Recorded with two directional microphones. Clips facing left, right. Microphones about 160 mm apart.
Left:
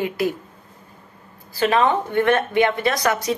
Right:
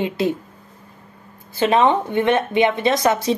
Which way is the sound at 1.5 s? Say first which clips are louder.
Right 2 dB; 25° right (ahead or behind).